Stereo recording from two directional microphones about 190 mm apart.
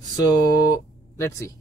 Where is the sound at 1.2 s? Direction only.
15° left (ahead or behind).